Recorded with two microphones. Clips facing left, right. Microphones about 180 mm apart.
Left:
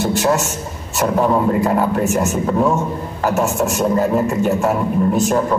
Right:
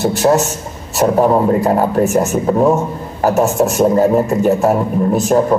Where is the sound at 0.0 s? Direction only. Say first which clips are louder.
Right 4 dB; 40° right (ahead or behind).